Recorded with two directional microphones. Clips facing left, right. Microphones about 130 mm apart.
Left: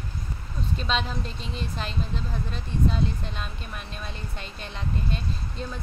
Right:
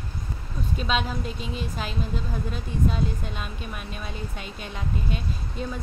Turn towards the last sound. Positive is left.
turn(degrees=-5)  # may be behind; listen again after turning